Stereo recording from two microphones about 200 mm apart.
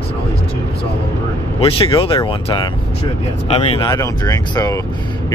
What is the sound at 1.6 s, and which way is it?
Speech, 25° left (ahead or behind).